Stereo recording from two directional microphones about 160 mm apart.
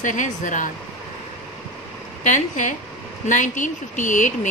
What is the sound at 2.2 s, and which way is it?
Speech, 50° left (ahead or behind).